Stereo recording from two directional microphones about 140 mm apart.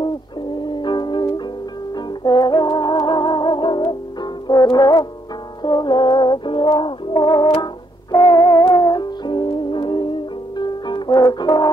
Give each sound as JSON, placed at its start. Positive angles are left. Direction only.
{"t": 0.0, "sound": "music", "side_deg": 30}